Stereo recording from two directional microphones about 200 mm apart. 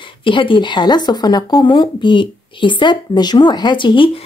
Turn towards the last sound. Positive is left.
turn(degrees=25)  # may be behind; listen again after turning